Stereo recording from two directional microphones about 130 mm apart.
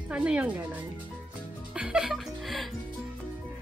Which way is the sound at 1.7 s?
10° right (ahead or behind).